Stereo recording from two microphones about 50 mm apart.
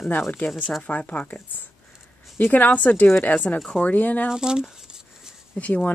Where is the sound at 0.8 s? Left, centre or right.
Left.